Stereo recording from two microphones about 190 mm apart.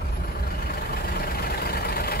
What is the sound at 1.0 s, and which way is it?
Vehicle, 55° left (ahead or behind).